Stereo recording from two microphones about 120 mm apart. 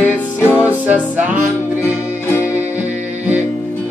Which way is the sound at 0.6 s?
15° right (ahead or behind).